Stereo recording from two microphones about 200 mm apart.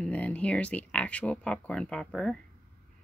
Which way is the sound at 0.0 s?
5° left (ahead or behind).